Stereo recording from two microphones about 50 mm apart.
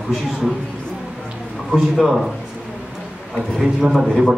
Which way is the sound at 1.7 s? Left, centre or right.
Centre.